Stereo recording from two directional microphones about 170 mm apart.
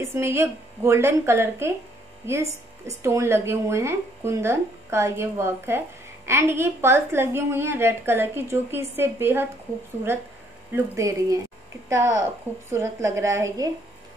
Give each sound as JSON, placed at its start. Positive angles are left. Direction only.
{"t": 0.0, "sound": "a woman's voice", "side_deg": -15}
{"t": 10.7, "sound": "a woman's voice", "side_deg": -15}